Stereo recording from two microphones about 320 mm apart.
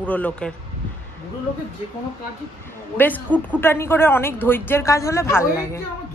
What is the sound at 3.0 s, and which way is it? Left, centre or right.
A woman's voice, centre.